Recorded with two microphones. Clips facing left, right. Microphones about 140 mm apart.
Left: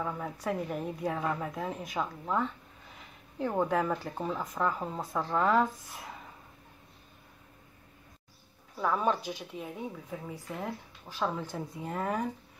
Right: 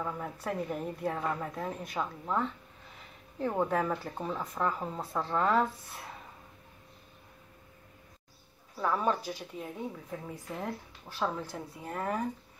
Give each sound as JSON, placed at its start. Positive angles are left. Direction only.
{"t": 0.0, "sound": "speech", "side_deg": 0}
{"t": 8.9, "sound": "speech", "side_deg": -5}
{"t": 9.2, "sound": "speech", "side_deg": 15}